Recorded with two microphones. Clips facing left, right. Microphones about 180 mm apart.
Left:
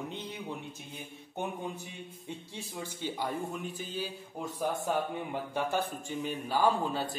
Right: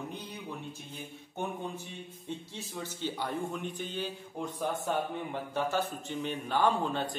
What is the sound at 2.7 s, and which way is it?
Speech, 10° left (ahead or behind).